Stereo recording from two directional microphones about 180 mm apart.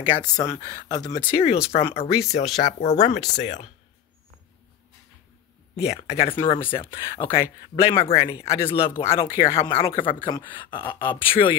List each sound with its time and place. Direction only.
0.0 s speech: 25° left (ahead or behind)
1.3 s speech: 35° left (ahead or behind)
5.9 s speech: 35° left (ahead or behind)